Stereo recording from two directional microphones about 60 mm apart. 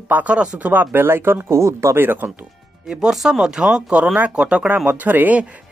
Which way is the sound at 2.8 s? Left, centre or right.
Centre.